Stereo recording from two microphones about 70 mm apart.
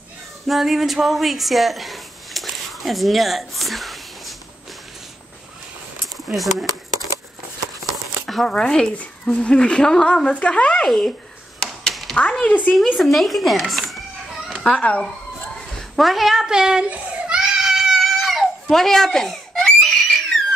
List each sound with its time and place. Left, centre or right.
0.5 s speech: centre
6.0 s a sound: centre
7.9 s speech: centre
11.6 s a sound: centre
12.2 s speech: centre
12.7 s speech: centre
14.7 s speech: centre
16.0 s speech: centre
16.9 s baby cry: centre